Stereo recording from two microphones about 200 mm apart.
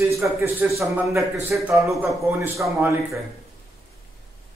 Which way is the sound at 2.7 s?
15° right (ahead or behind).